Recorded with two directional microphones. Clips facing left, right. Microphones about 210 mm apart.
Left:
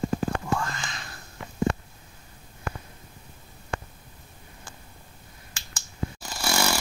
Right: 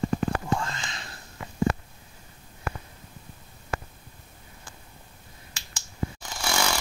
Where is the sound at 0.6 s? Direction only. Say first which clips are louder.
Left 1 dB; 25° right (ahead or behind).